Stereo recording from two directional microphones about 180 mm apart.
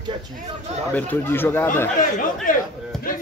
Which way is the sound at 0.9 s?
10° left (ahead or behind).